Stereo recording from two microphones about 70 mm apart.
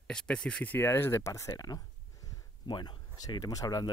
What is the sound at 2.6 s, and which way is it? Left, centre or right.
Speech, left.